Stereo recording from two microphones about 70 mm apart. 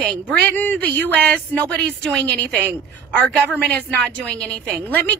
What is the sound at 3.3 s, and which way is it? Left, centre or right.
A woman's voice, centre.